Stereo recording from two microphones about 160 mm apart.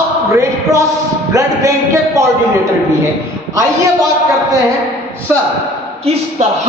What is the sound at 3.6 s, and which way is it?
A man's voice, 20° right (ahead or behind).